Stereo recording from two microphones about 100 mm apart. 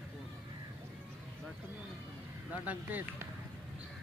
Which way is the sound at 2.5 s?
15° right (ahead or behind).